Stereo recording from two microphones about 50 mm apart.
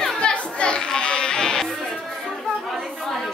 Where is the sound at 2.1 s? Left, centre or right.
Centre.